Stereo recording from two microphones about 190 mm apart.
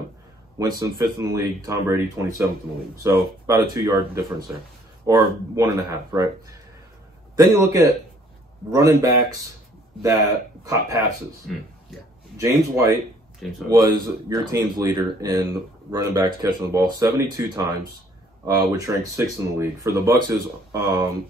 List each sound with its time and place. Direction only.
0.6 s speech: 15° right (ahead or behind)
7.3 s speech: 20° right (ahead or behind)
10.6 s speech: 15° right (ahead or behind)
12.4 s speech: 15° right (ahead or behind)